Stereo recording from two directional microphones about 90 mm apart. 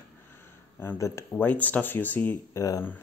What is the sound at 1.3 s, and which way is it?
Speech, 20° left (ahead or behind).